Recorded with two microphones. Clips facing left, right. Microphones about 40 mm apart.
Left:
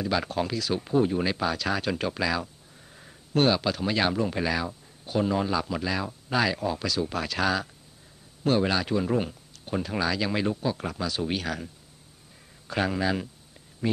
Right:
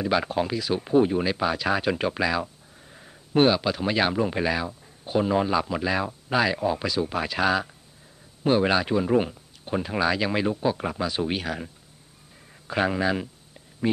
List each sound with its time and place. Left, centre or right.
0.0 s speech: centre
2.9 s a sound: centre
3.3 s speech: centre